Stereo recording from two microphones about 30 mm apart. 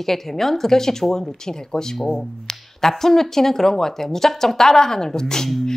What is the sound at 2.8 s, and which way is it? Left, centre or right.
Speech, centre.